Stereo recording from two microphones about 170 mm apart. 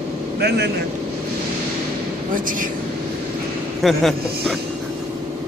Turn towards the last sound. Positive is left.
turn(degrees=0)  # may be behind; listen again after turning